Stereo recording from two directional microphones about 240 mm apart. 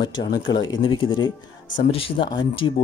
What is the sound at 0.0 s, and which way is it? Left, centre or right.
Speech, centre.